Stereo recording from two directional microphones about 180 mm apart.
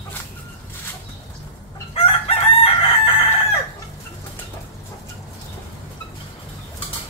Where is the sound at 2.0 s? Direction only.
30° left (ahead or behind).